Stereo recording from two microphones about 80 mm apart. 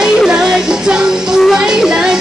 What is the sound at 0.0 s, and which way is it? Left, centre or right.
Music, centre.